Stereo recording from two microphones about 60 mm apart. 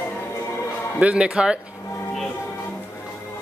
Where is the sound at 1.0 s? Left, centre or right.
Centre.